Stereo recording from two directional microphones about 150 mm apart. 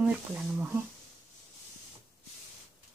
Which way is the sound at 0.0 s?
10° right (ahead or behind).